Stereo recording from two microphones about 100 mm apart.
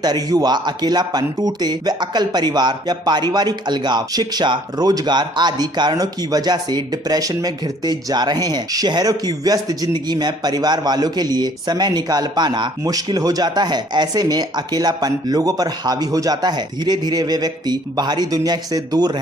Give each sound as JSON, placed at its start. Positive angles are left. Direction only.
{"t": 0.0, "sound": "speech", "side_deg": -40}